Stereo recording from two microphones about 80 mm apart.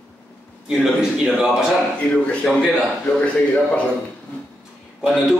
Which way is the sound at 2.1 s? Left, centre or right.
Centre.